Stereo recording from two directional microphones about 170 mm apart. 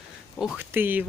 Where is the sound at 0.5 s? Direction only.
10° right (ahead or behind).